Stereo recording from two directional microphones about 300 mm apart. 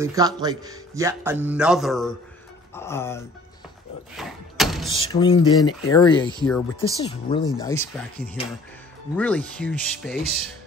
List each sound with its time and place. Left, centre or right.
0.0 s a man's voice: centre
4.2 s a sound: centre
4.9 s speech: centre